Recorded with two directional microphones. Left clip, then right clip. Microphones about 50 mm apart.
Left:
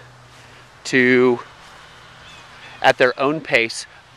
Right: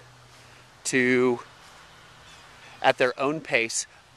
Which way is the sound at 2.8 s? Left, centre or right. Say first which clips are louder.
Left 7 dB; right.